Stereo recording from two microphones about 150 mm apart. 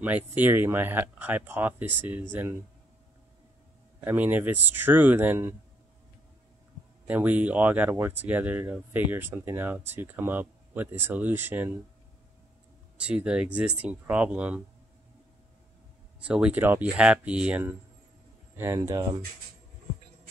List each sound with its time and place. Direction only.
0.0 s speech: 10° right (ahead or behind)
4.0 s speech: 10° right (ahead or behind)
7.1 s speech: 10° right (ahead or behind)
12.9 s speech: 5° right (ahead or behind)
16.3 s speech: 10° right (ahead or behind)
18.8 s speech: 25° right (ahead or behind)